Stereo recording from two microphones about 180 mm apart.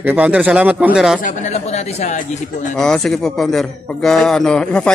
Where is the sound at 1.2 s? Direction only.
40° left (ahead or behind).